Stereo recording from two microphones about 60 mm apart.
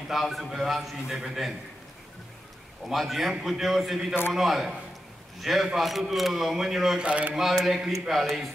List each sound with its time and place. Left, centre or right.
0.1 s a man's voice: centre
2.9 s a man's voice: centre
7.1 s a sound: right
7.3 s a man's voice: centre